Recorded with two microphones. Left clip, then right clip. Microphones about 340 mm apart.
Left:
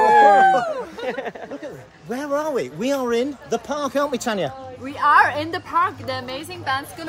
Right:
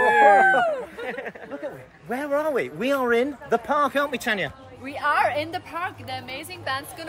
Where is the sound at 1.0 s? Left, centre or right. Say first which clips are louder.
Left 5 dB; left.